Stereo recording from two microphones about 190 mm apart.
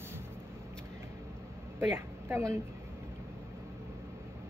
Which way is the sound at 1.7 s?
10° right (ahead or behind).